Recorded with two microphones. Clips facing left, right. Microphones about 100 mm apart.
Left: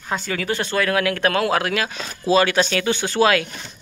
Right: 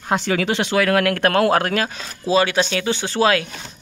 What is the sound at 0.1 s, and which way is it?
Speech, 85° right.